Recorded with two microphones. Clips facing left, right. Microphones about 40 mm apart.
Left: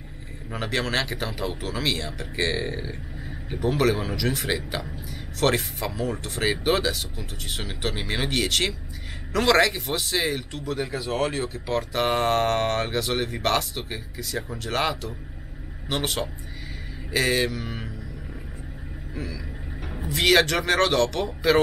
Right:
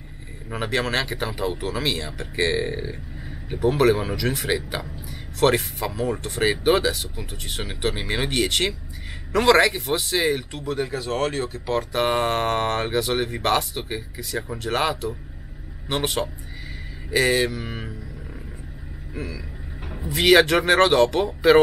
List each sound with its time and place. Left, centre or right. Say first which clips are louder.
0.5 s a man's voice: right 2 dB; centre
19.1 s speech: right 2 dB; centre